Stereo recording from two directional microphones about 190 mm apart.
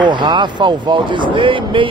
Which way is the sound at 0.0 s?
25° right (ahead or behind).